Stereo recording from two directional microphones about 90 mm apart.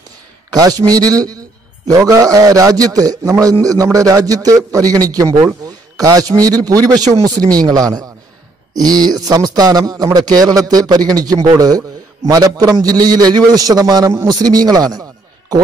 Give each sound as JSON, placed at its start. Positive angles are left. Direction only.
{"t": 0.5, "sound": "a man's voice", "side_deg": -40}